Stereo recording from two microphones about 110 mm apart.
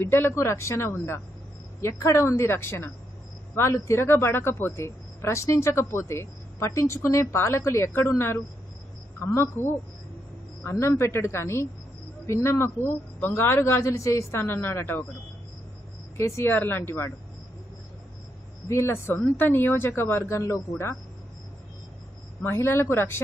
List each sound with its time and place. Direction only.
0.0 s speech: 20° left (ahead or behind)
10.6 s speech: 25° left (ahead or behind)
16.2 s speech: 25° left (ahead or behind)
18.7 s speech: 25° left (ahead or behind)
22.4 s speech: 25° left (ahead or behind)